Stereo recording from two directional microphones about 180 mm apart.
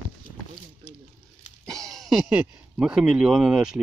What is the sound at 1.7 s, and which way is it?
Speech, centre (ahead or behind).